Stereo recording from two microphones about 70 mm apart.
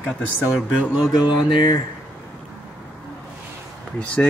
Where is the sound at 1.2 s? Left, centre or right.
Left.